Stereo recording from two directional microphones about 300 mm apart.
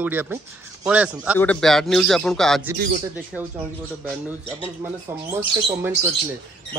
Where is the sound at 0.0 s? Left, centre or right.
Centre.